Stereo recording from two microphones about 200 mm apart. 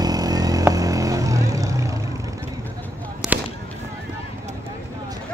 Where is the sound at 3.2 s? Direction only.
Centre (ahead or behind).